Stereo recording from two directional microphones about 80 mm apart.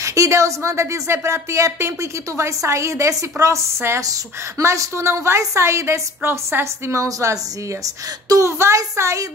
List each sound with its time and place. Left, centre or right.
0.0 s speech: right